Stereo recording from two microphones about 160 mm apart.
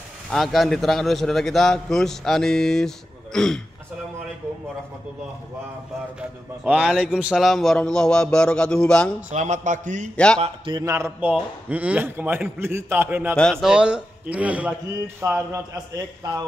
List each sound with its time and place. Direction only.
0.3 s a man's voice: centre (ahead or behind)
6.6 s a man's voice: 5° right (ahead or behind)
9.3 s a man's voice: 50° right (ahead or behind)
10.1 s a man's voice: 5° left (ahead or behind)
10.4 s a man's voice: 30° right (ahead or behind)
10.8 s a man's voice: 20° right (ahead or behind)
13.4 s a man's voice: centre (ahead or behind); by 15.6 s 15° right (ahead or behind)